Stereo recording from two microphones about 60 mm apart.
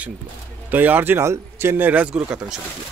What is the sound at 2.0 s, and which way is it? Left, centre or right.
Speech, centre.